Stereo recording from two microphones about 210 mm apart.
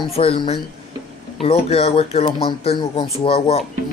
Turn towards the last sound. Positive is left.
turn(degrees=25)  # may be behind; listen again after turning